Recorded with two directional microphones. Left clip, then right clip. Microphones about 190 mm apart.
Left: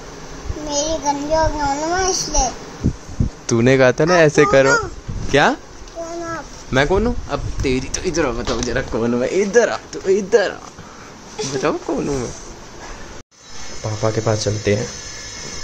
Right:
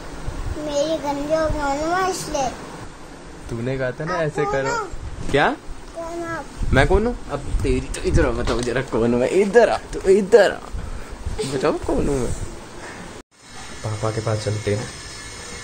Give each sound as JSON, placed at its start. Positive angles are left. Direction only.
{"t": 0.7, "sound": "a child's voice", "side_deg": 0}
{"t": 3.6, "sound": "speech", "side_deg": 50}
{"t": 5.3, "sound": "speech", "side_deg": 20}
{"t": 6.2, "sound": "a sound", "side_deg": 0}
{"t": 7.2, "sound": "speech", "side_deg": 20}
{"t": 8.0, "sound": "speech", "side_deg": 0}
{"t": 11.3, "sound": "a child's voice", "side_deg": 0}
{"t": 14.0, "sound": "speech", "side_deg": 15}